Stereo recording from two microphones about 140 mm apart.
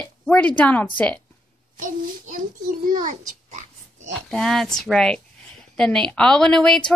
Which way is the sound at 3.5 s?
60° right (ahead or behind).